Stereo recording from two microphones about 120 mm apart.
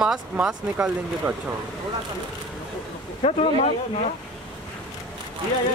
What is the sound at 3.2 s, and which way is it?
Speech, 65° left (ahead or behind).